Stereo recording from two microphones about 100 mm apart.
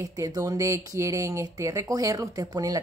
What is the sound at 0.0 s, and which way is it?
Speech, 35° right (ahead or behind).